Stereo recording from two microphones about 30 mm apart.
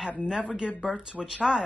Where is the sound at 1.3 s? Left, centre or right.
Right.